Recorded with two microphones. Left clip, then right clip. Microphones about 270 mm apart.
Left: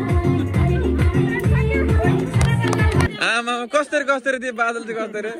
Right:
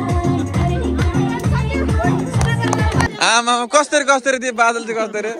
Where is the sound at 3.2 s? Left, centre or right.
Centre.